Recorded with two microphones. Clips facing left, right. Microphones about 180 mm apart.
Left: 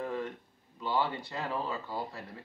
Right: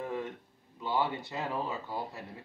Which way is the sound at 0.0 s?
15° right (ahead or behind).